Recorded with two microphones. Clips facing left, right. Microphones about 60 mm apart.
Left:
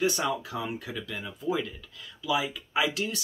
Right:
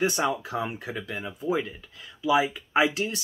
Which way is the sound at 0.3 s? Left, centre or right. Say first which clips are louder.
Right 2 dB; right.